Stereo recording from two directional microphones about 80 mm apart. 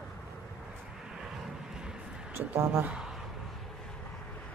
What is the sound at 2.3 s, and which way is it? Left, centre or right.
Speech, right.